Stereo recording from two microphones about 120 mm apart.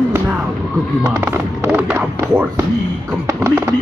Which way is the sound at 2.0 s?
25° right (ahead or behind).